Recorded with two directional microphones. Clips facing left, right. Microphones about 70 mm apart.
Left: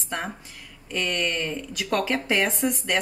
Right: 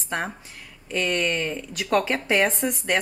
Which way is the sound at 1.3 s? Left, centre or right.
Right.